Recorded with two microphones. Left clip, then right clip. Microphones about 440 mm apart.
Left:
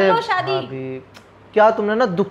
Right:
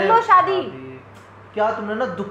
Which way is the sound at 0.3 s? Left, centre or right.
Centre.